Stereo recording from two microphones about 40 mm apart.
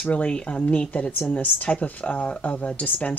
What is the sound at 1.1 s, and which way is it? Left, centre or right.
Speech, left.